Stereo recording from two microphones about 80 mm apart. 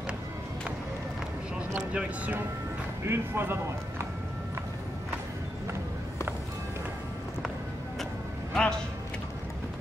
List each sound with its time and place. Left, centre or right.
1.8 s speech: centre
3.1 s speech: right
8.5 s speech: centre